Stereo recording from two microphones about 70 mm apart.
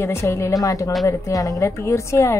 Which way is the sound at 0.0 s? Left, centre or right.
Left.